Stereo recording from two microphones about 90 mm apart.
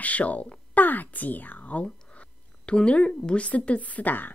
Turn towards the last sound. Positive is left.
turn(degrees=20)  # may be behind; listen again after turning